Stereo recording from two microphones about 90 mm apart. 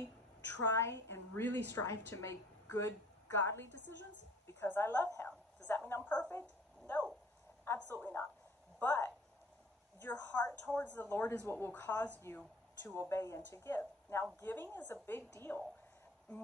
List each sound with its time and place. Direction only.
0.5 s a woman's voice: 30° left (ahead or behind)
4.6 s a woman's voice: 25° left (ahead or behind)
6.1 s a sound: 15° left (ahead or behind)
7.6 s a woman's voice: 25° left (ahead or behind)
8.7 s a sound: 20° left (ahead or behind)
10.0 s a woman's voice: 15° left (ahead or behind)
13.0 s a woman's voice: 30° left (ahead or behind)